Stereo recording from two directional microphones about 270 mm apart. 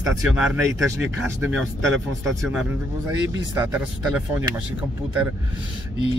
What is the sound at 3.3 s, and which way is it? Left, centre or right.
Speech, centre.